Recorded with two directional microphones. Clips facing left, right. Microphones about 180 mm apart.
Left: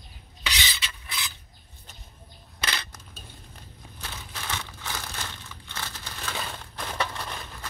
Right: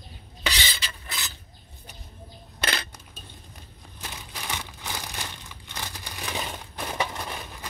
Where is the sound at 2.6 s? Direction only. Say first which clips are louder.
Right 3 dB; 55° right (ahead or behind).